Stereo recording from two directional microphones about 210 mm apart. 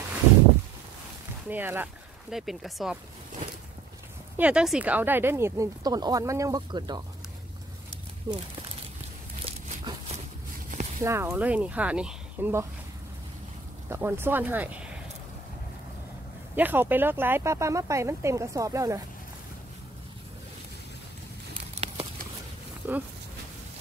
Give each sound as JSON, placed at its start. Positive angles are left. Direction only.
{"t": 1.5, "sound": "speech", "side_deg": -10}
{"t": 4.4, "sound": "speech", "side_deg": -5}
{"t": 8.3, "sound": "speech", "side_deg": -15}
{"t": 9.4, "sound": "a sound", "side_deg": -30}
{"t": 11.1, "sound": "speech", "side_deg": -15}
{"t": 13.8, "sound": "speech", "side_deg": -10}
{"t": 16.5, "sound": "speech", "side_deg": -10}
{"t": 21.7, "sound": "a sound", "side_deg": -30}
{"t": 22.8, "sound": "a sound", "side_deg": -10}